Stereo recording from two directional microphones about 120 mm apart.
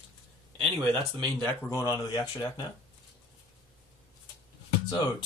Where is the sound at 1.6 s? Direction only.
25° left (ahead or behind).